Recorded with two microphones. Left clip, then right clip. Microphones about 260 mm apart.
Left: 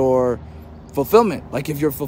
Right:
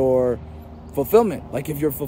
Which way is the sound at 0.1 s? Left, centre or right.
Left.